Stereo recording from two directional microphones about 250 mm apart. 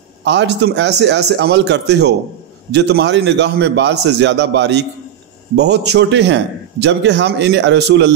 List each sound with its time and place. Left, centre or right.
0.2 s a man's voice: right